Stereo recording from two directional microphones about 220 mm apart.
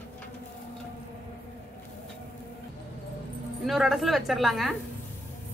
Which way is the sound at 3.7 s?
Centre (ahead or behind).